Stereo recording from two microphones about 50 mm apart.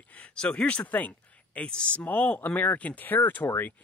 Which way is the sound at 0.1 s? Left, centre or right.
Left.